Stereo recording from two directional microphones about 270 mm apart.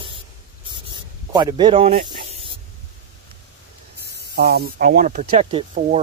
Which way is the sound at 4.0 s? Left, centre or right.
Right.